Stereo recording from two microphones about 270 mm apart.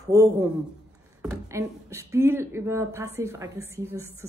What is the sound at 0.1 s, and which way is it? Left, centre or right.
Speech, centre.